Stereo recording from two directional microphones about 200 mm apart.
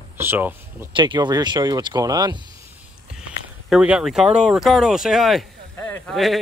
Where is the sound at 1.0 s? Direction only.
20° right (ahead or behind).